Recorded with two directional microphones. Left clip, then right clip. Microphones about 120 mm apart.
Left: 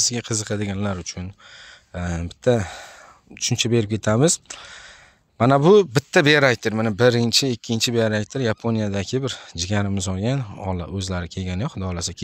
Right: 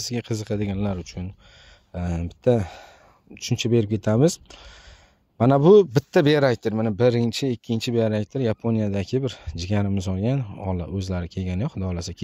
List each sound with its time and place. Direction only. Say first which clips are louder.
0.0 s a man's voice: left 6 dB; 25° right (ahead or behind)